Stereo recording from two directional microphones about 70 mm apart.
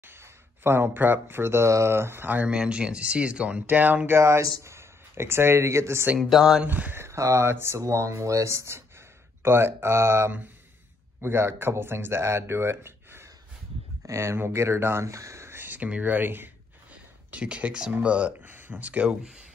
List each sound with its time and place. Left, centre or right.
0.1 s a sound: right
0.8 s speech: right
2.5 s speech: centre; by 4.2 s right
4.2 s speech: right
6.1 s speech: centre
6.6 s speech: right
7.2 s speech: right
16.9 s a sound: centre
17.9 s speech: centre